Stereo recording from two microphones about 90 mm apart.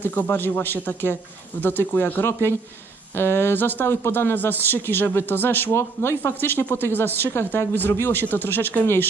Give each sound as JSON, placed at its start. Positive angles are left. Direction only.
{"t": 0.0, "sound": "speech", "side_deg": 20}